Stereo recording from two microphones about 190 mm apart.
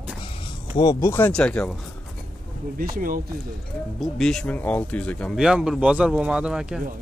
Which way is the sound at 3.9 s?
Centre (ahead or behind).